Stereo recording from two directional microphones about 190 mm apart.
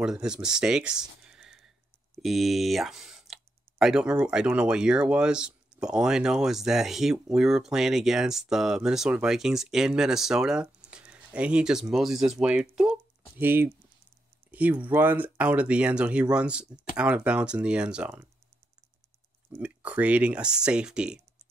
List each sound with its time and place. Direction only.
0.0 s speech: 5° right (ahead or behind)
19.5 s speech: 10° right (ahead or behind)